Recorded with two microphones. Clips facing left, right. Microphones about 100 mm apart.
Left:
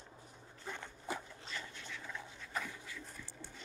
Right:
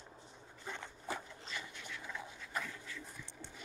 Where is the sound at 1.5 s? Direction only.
10° right (ahead or behind).